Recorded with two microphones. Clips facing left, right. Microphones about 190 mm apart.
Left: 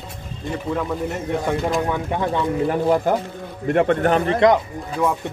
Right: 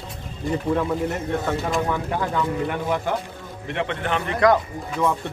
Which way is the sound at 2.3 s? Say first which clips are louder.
Left 6 dB; 40° left (ahead or behind).